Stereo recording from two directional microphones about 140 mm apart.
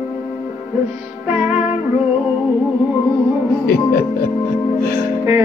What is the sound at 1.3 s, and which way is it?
Music, 10° right (ahead or behind).